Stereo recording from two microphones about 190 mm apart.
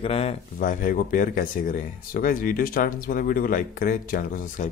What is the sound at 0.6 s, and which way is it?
Speech, 45° left (ahead or behind).